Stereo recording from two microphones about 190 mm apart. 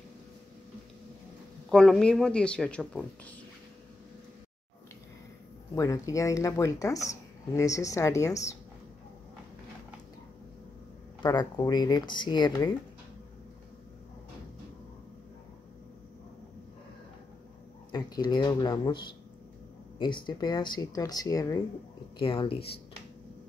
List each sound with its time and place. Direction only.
1.7 s speech: centre (ahead or behind)
5.8 s speech: 15° left (ahead or behind)
11.2 s speech: 20° left (ahead or behind)
17.9 s speech: 20° left (ahead or behind)
20.0 s speech: 25° left (ahead or behind)